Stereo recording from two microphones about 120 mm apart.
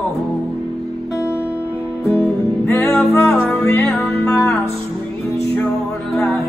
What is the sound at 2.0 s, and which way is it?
Music, 20° left (ahead or behind).